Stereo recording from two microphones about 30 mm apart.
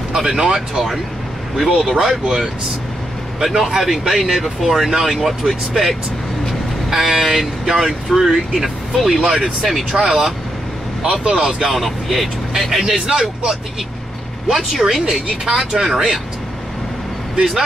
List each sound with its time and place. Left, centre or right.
0.2 s speech: centre
1.6 s speech: centre
2.2 s speech: right
3.5 s speech: centre
9.2 s speech: centre
9.7 s speech: centre
11.0 s speech: right
11.7 s speech: centre
12.8 s speech: centre
14.5 s speech: centre